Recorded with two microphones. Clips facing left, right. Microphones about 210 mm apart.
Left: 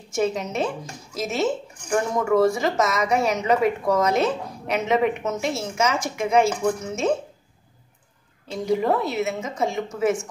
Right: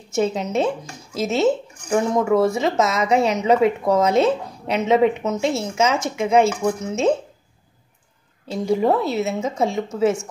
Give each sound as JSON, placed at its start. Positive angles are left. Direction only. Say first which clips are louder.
{"t": 0.1, "sound": "a woman's voice", "louder": "right 3 dB", "side_deg": -25}
{"t": 2.5, "sound": "a woman's voice", "louder": "right 3 dB", "side_deg": -25}
{"t": 8.5, "sound": "a woman's voice", "louder": "right 3 dB", "side_deg": -30}